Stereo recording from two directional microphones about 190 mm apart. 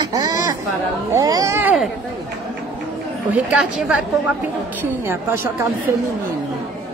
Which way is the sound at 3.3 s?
5° right (ahead or behind).